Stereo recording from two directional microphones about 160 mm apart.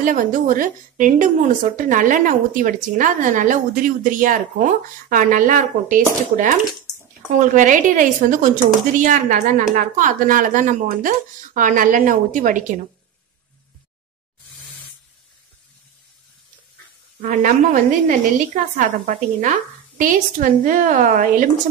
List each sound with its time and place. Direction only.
0.0 s a woman's voice: 55° right (ahead or behind)
17.2 s a woman's voice: 55° right (ahead or behind)